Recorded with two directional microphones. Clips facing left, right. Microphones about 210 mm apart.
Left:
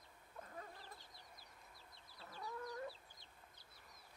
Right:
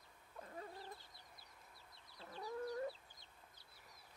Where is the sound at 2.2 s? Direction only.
30° right (ahead or behind).